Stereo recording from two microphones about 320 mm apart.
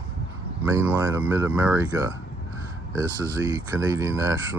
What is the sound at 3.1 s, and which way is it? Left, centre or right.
Speech, centre.